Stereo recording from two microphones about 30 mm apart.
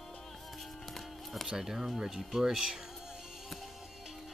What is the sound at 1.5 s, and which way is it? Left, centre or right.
Speech, centre.